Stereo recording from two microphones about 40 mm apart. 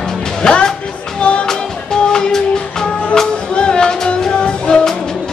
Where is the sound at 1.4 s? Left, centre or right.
Centre.